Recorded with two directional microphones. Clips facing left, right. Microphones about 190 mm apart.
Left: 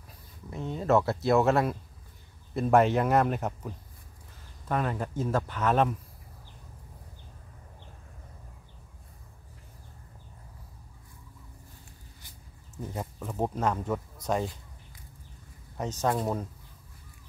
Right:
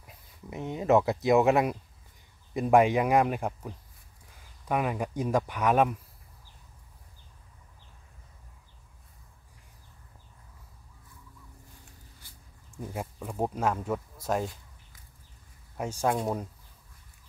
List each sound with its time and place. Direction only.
0.0 s speech: 15° right (ahead or behind)
12.7 s speech: 10° right (ahead or behind)
15.8 s speech: 10° right (ahead or behind)